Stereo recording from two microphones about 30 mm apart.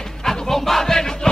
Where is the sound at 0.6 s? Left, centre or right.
Centre.